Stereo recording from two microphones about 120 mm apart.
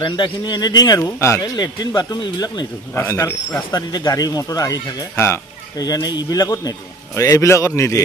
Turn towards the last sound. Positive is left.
turn(degrees=25)  # may be behind; listen again after turning